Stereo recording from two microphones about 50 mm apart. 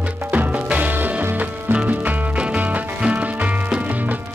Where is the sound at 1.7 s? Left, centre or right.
Right.